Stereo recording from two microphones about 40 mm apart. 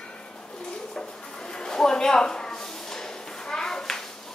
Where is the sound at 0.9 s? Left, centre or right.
Centre.